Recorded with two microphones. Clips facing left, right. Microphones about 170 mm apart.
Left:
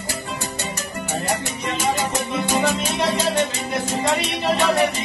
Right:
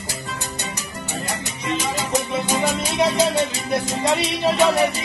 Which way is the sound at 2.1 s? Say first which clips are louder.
Even; 15° right (ahead or behind).